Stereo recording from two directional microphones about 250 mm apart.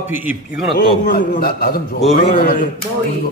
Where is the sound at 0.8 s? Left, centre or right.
Left.